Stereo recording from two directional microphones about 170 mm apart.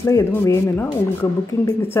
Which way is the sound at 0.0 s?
15° left (ahead or behind).